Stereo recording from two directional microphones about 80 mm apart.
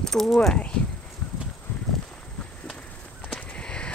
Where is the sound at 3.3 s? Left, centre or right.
Centre.